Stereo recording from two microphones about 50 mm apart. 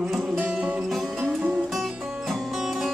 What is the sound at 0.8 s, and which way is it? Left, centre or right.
Music, centre.